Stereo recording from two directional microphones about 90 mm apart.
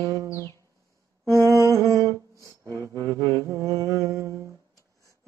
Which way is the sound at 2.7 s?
35° right (ahead or behind).